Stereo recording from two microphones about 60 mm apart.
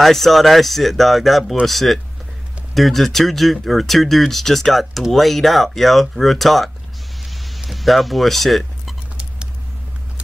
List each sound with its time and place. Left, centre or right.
0.0 s speech: centre
7.2 s a sound: centre
9.1 s vehicle: centre